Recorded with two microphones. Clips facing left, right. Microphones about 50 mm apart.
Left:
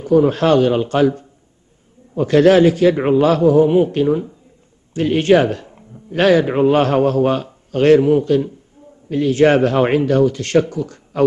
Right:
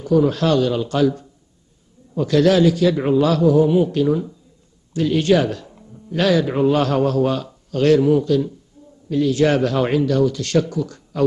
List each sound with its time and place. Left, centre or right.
0.0 s a man's voice: left